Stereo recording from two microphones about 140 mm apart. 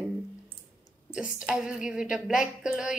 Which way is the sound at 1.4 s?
5° right (ahead or behind).